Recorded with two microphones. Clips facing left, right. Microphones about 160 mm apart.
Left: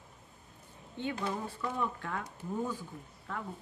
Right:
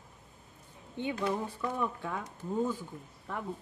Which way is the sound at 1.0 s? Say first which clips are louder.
Right 3 dB; 15° right (ahead or behind).